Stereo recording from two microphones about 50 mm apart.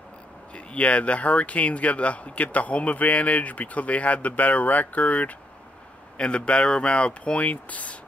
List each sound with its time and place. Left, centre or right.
0.6 s speech: left
6.1 s speech: left